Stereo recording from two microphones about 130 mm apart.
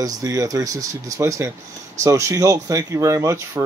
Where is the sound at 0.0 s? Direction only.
25° right (ahead or behind).